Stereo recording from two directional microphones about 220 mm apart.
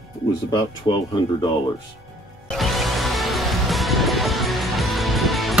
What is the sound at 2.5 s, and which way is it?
Music, centre (ahead or behind).